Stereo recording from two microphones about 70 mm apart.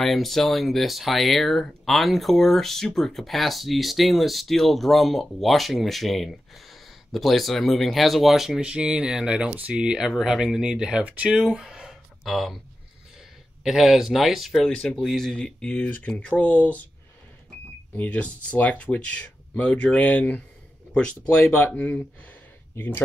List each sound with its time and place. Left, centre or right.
0.0 s speech: centre
13.7 s speech: centre
14.7 s speech: centre
17.9 s speech: left